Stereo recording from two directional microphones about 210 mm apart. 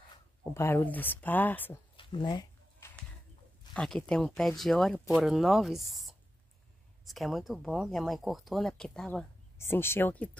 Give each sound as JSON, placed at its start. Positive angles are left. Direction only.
{"t": 0.4, "sound": "speech", "side_deg": 10}
{"t": 2.0, "sound": "a sound", "side_deg": 20}
{"t": 3.7, "sound": "speech", "side_deg": 5}